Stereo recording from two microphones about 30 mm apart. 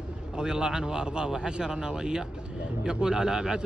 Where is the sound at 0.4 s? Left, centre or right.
Right.